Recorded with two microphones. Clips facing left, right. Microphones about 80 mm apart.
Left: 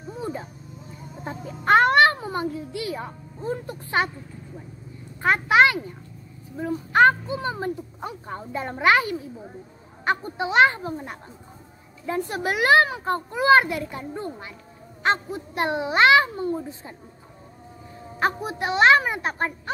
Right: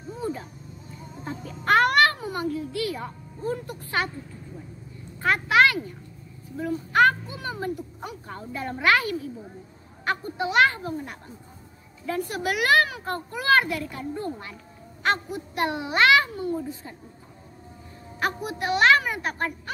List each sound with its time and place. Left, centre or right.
0.1 s a sound: left
1.2 s a child's voice: left
5.2 s a woman's voice: left
18.2 s a woman's voice: left